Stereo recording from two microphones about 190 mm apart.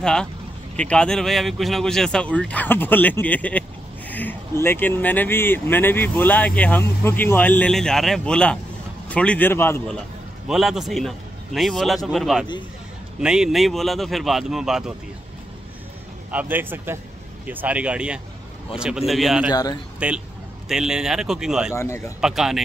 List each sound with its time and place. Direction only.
0.0 s a man's voice: 5° left (ahead or behind)
10.5 s a man's voice: centre (ahead or behind)
16.3 s a man's voice: 10° right (ahead or behind)
19.5 s speech: 20° left (ahead or behind)
20.0 s a man's voice: 5° right (ahead or behind)
21.7 s speech: 15° left (ahead or behind)
22.2 s a man's voice: centre (ahead or behind)